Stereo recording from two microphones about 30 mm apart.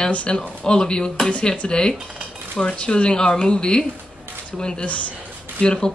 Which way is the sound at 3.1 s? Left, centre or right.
Left.